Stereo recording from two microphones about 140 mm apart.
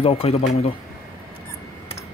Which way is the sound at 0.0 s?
45° left (ahead or behind).